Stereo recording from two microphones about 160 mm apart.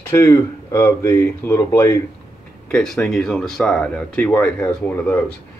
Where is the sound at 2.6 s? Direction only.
5° left (ahead or behind).